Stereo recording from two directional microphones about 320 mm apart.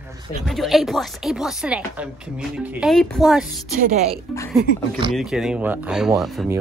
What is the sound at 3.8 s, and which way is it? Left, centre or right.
Speech, right.